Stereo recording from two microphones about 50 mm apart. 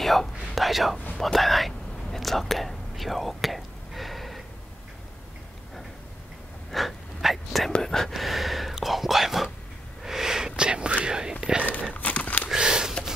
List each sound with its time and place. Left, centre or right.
0.0 s speech: centre
2.1 s whispering: centre
6.7 s whispering: centre
7.8 s speech: centre
8.1 s whispering: centre
11.9 s crumpling: left
12.4 s a sound: centre